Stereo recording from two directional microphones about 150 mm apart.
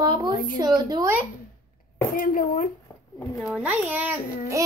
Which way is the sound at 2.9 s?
15° left (ahead or behind).